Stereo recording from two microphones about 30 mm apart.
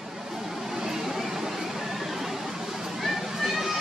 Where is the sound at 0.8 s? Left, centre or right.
Centre.